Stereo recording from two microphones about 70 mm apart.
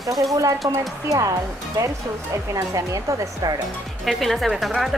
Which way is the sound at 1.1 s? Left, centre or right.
Right.